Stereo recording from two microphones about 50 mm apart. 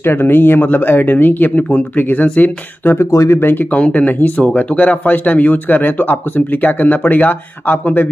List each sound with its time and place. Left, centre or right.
0.0 s speech: left
3.0 s speech: left
3.7 s speech: left